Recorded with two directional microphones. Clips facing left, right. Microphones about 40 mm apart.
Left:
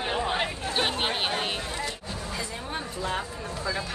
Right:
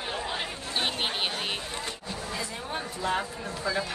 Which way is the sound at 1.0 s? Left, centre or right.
Centre.